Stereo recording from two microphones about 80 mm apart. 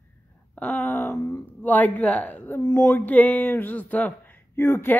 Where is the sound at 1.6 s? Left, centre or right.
Left.